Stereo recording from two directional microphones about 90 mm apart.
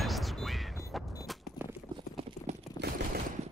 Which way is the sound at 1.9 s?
60° right (ahead or behind).